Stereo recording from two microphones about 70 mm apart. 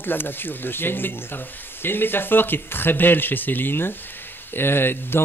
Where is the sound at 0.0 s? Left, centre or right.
Left.